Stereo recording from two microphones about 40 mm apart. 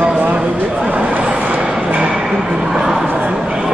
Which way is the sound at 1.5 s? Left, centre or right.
Right.